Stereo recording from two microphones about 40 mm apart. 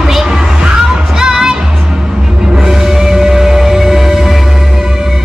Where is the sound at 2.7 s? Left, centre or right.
Centre.